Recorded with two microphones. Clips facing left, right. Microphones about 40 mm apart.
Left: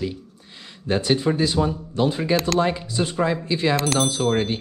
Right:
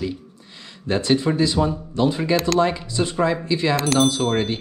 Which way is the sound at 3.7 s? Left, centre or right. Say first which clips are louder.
Right 3 dB; centre.